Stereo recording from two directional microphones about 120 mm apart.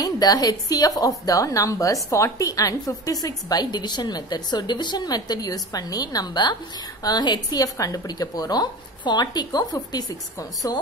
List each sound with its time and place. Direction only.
0.0 s a woman's voice: 30° left (ahead or behind)